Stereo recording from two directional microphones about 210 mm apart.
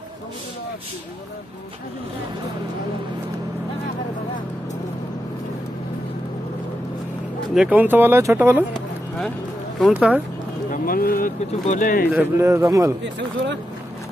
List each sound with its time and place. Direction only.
7.5 s speech: 5° right (ahead or behind)
9.8 s speech: 5° right (ahead or behind)
10.7 s speech: 45° left (ahead or behind)
12.1 s speech: 10° right (ahead or behind)